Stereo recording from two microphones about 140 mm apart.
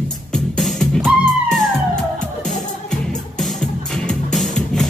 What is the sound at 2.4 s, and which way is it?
Music, 5° left (ahead or behind).